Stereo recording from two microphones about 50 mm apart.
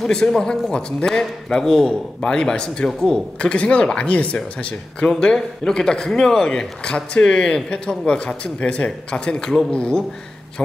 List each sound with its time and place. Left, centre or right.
0.3 s speech: centre